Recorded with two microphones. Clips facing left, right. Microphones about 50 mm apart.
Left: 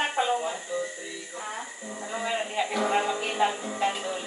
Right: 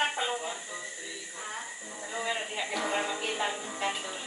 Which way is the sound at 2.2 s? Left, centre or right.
Left.